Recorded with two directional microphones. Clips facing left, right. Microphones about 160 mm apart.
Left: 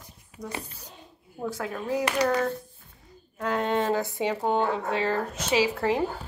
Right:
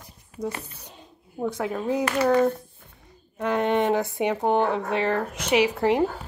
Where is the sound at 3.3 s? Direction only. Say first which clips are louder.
Right 3 dB; 20° right (ahead or behind).